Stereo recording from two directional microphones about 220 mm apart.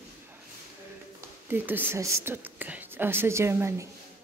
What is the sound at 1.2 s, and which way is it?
Speech, 10° right (ahead or behind).